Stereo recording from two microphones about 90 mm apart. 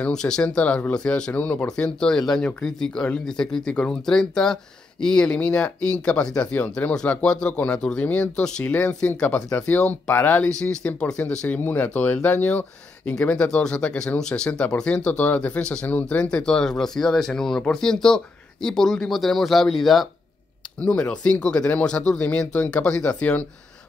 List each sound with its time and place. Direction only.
0.0 s speech: 10° left (ahead or behind)
20.8 s speech: 10° left (ahead or behind)